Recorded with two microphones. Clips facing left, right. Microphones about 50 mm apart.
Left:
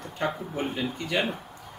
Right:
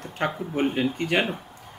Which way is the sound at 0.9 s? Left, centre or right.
Right.